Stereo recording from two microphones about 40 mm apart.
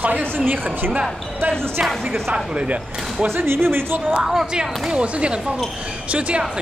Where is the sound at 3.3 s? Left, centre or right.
Right.